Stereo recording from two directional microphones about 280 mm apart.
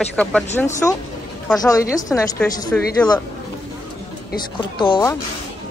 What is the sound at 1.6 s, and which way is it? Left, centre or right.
Speech, centre.